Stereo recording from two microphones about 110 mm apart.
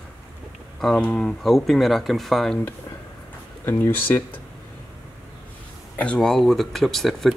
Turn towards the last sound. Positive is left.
turn(degrees=0)  # may be behind; listen again after turning